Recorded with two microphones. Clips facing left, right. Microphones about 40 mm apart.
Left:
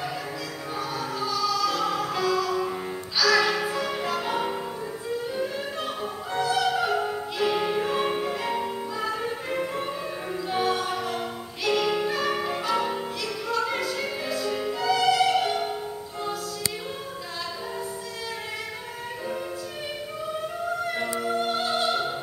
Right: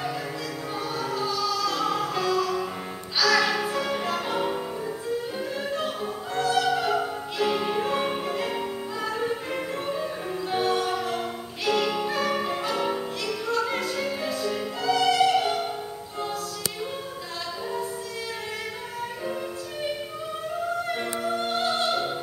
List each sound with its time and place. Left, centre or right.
0.7 s music: centre
6.6 s opera: centre
7.3 s music: centre
14.0 s opera: centre
15.4 s music: centre
20.8 s music: centre
21.3 s opera: centre